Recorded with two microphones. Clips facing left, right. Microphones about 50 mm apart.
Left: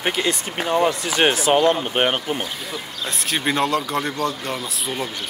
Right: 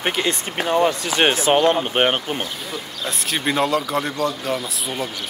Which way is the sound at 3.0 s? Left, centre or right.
Centre.